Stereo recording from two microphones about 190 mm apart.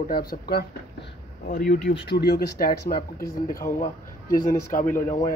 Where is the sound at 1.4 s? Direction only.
45° left (ahead or behind).